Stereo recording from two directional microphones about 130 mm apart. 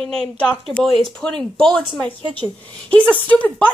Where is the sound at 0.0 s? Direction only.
5° left (ahead or behind).